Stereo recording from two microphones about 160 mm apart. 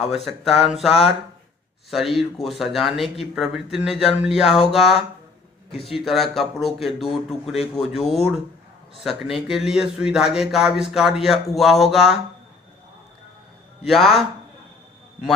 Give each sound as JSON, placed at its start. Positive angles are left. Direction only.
{"t": 0.0, "sound": "speech", "side_deg": 0}
{"t": 5.7, "sound": "speech", "side_deg": 35}
{"t": 6.0, "sound": "speech", "side_deg": 0}
{"t": 13.8, "sound": "speech", "side_deg": 0}